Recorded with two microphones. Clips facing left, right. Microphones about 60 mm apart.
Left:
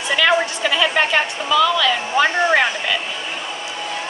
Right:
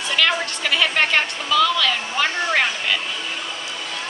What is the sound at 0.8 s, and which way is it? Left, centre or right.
Speech, centre.